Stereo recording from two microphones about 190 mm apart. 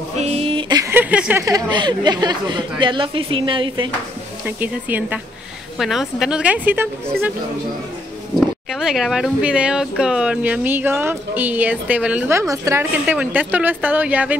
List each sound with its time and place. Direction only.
0.2 s a sound: 35° right (ahead or behind); by 1.4 s 10° right (ahead or behind)
1.4 s a woman's voice: 20° right (ahead or behind)
4.5 s a woman's voice: 10° right (ahead or behind)
8.4 s speech: centre (ahead or behind)